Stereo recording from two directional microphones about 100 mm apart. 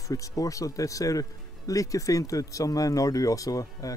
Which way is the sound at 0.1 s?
35° left (ahead or behind).